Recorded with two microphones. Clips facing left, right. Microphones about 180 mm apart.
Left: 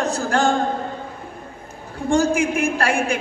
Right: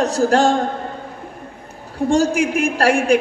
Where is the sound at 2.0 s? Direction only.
40° right (ahead or behind).